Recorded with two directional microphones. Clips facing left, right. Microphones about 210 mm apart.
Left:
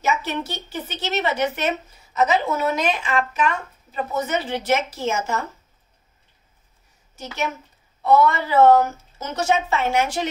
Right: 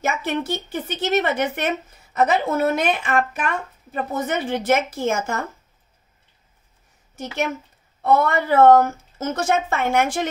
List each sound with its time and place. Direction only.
0.0 s speech: 55° right (ahead or behind)
7.2 s a woman's voice: 55° right (ahead or behind)